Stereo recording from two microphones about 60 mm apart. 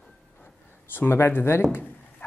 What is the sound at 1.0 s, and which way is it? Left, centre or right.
Speech, left.